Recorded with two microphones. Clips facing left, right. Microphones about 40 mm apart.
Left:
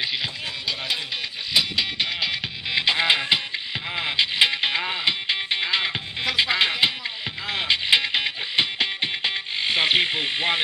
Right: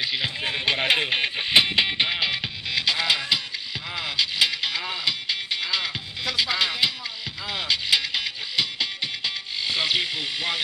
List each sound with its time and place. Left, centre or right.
0.7 s music: right
2.0 s music: centre
2.7 s music: left